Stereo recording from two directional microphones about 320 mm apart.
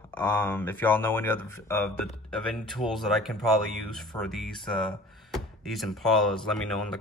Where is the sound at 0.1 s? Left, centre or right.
Centre.